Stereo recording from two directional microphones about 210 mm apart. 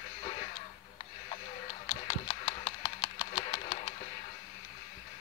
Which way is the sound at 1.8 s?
30° left (ahead or behind).